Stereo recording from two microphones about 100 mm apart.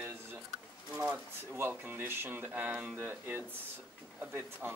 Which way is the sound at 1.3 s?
25° right (ahead or behind).